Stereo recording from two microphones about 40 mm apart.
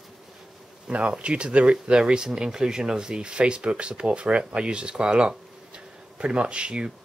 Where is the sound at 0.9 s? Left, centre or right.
Right.